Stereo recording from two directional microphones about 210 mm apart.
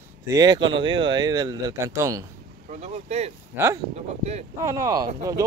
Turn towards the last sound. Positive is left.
turn(degrees=-15)  # may be behind; listen again after turning